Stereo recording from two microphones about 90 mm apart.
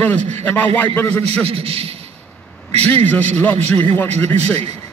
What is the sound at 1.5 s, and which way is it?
Speech, 90° right.